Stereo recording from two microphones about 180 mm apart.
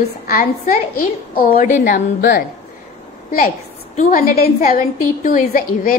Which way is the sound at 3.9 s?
50° left (ahead or behind).